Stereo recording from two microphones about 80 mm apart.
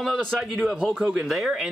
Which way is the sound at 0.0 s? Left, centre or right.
Centre.